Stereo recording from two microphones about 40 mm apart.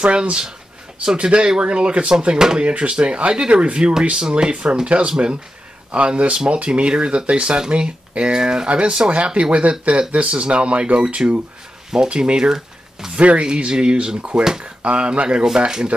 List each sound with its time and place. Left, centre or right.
0.0 s speech: right
2.3 s speech: centre
2.6 s speech: right
6.3 s speech: right
13.1 s speech: right